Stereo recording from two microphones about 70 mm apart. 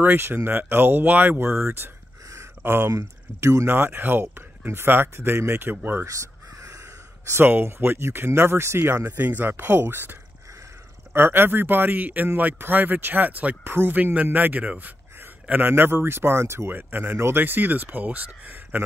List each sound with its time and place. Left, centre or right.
0.0 s speech: right
2.3 s a sound: right
2.9 s speech: right
6.0 s crow: right
7.2 s speech: right
11.1 s speech: right